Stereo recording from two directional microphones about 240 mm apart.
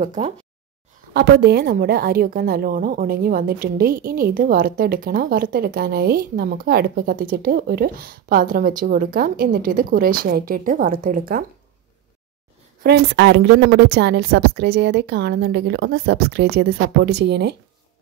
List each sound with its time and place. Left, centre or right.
0.0 s a woman's voice: right
1.1 s a woman's voice: right
12.8 s a woman's voice: right